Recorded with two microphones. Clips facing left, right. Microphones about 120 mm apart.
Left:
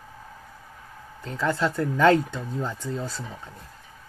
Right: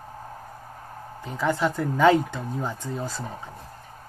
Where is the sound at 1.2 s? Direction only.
15° right (ahead or behind).